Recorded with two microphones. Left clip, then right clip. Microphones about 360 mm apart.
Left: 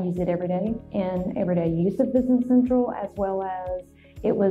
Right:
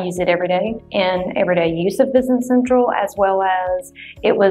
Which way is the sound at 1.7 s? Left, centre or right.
Right.